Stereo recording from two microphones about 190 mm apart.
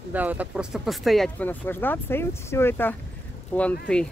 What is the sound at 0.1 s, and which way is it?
Speech, 10° right (ahead or behind).